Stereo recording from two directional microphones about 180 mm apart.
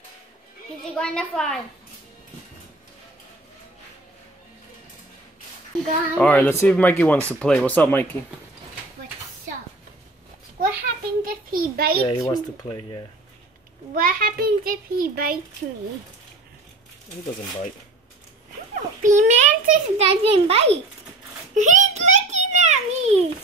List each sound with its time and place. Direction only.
0.9 s a woman's voice: 5° left (ahead or behind)
6.1 s speech: 10° left (ahead or behind)
10.6 s a sound: 55° right (ahead or behind)
12.1 s speech: 20° left (ahead or behind)
14.0 s a child's voice: 55° right (ahead or behind)
19.1 s a child's voice: 40° right (ahead or behind)
21.5 s a sound: 45° right (ahead or behind)